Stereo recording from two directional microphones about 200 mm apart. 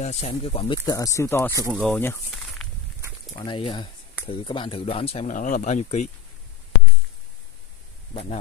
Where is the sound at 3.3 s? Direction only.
25° left (ahead or behind).